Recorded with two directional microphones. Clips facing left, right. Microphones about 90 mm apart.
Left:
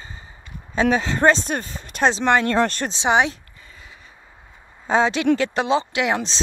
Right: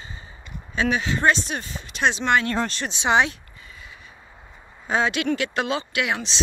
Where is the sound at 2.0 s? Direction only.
30° left (ahead or behind).